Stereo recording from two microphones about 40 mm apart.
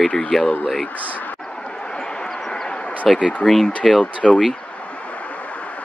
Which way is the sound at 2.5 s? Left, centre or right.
Left.